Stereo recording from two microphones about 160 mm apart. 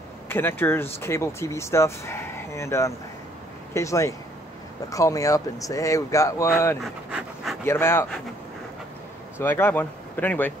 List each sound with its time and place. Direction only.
0.3 s speech: 15° left (ahead or behind)
6.8 s speech: 5° right (ahead or behind)
7.6 s speech: 15° left (ahead or behind)
9.4 s speech: 15° left (ahead or behind)